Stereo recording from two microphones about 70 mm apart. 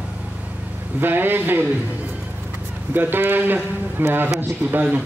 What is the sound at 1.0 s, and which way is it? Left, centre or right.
Speech, right.